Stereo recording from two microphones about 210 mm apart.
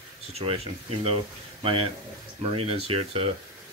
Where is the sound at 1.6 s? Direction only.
25° right (ahead or behind).